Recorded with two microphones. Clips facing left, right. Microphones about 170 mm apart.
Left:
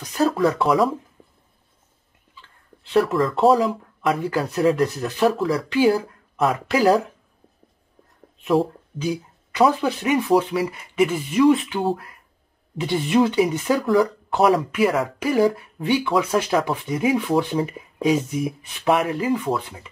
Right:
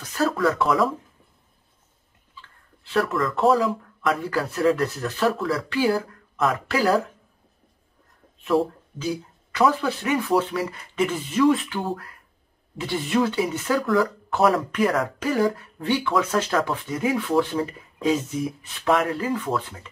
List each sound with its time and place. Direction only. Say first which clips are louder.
0.5 s speech: left 2 dB; 25° left (ahead or behind)
2.8 s speech: left 4 dB; 25° left (ahead or behind)
8.9 s speech: left 4 dB; 15° left (ahead or behind)
13.7 s speech: left 2 dB; 30° left (ahead or behind)
14.7 s speech: left 2 dB; 5° left (ahead or behind)